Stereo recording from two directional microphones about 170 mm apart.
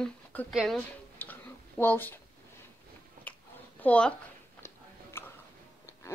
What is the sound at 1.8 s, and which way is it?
Speech, 10° left (ahead or behind).